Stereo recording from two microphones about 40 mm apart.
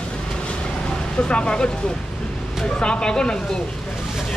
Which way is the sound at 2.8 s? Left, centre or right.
Left.